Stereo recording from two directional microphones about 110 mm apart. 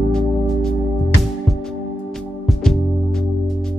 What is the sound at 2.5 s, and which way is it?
Music, 5° left (ahead or behind).